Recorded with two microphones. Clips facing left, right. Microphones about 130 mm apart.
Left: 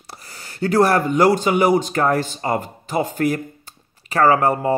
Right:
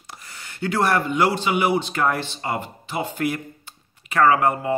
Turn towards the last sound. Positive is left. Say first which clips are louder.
# left 2 dB
turn(degrees=40)  # may be behind; listen again after turning